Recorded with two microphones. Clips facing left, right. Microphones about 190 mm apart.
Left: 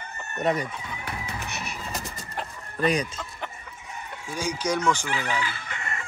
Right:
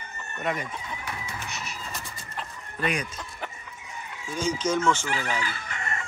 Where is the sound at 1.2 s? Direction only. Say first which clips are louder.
Left 2 dB; 60° left (ahead or behind).